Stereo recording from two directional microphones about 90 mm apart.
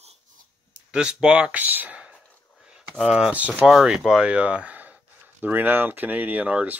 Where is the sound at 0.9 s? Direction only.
10° right (ahead or behind).